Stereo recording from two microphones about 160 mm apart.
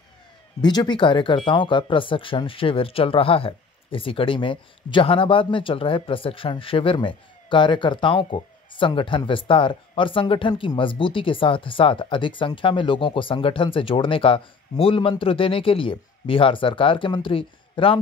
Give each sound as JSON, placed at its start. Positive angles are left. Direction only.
{"t": 0.6, "sound": "speech", "side_deg": 25}